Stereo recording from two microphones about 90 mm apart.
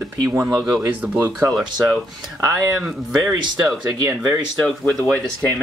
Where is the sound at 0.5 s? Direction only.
5° right (ahead or behind).